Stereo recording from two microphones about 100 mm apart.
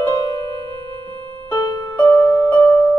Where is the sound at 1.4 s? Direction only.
45° left (ahead or behind).